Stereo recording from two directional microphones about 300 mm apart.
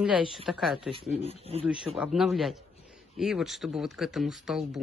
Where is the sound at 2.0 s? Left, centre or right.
Centre.